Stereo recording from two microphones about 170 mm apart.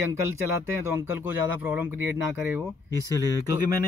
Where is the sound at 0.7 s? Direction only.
15° right (ahead or behind).